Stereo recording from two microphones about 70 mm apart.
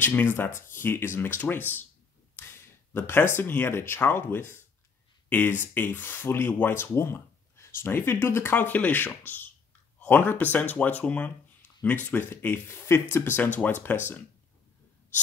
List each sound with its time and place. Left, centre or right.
0.0 s speech: left